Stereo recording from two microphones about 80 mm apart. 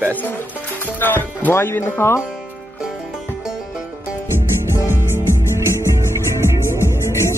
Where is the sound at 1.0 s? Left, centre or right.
Left.